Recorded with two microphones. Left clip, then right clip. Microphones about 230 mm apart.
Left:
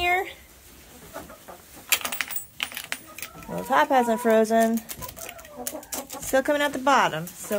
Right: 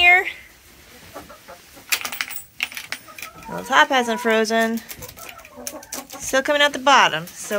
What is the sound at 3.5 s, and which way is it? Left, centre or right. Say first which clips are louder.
Speech: right 4 dB; centre.